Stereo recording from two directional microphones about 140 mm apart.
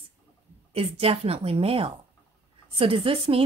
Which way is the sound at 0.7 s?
45° right (ahead or behind).